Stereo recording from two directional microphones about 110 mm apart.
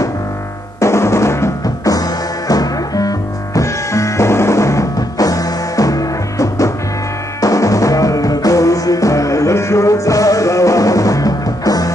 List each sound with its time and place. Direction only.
0.7 s music: 25° left (ahead or behind)